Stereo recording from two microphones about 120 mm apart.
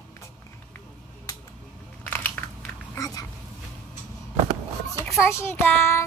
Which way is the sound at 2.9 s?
30° left (ahead or behind).